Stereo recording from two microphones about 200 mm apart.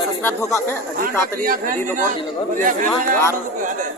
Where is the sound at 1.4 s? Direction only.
45° right (ahead or behind).